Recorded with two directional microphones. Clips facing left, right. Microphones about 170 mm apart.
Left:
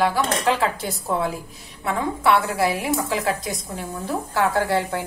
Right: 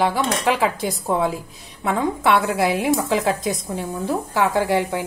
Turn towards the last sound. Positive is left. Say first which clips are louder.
# right 2 dB
turn(degrees=-15)  # may be behind; listen again after turning